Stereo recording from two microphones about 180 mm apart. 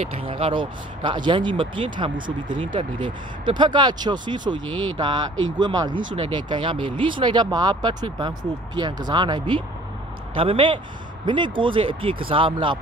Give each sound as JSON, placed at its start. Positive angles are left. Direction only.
{"t": 0.0, "sound": "speech", "side_deg": -30}
{"t": 2.1, "sound": "speech", "side_deg": -50}
{"t": 2.6, "sound": "speech", "side_deg": -25}